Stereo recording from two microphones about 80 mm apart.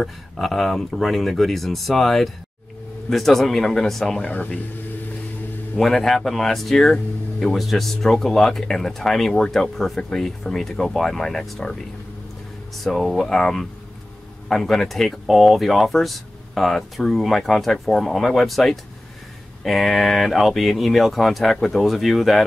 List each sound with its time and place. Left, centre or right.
0.0 s speech: centre
4.3 s speech: centre
5.8 s speech: centre
12.8 s speech: centre